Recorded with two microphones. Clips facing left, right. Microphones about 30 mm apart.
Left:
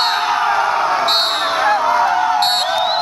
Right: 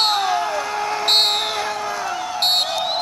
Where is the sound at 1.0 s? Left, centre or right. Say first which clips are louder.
Left 1 dB; centre.